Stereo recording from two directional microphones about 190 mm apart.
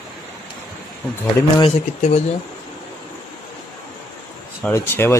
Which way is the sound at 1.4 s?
20° left (ahead or behind).